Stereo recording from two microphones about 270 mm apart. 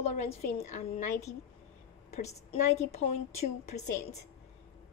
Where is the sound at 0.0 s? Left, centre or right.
Left.